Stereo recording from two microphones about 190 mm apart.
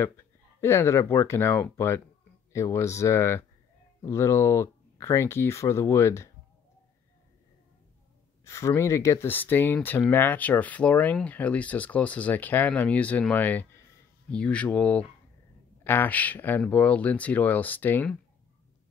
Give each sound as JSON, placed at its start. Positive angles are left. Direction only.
{"t": 0.0, "sound": "speech", "side_deg": 15}
{"t": 8.5, "sound": "speech", "side_deg": 15}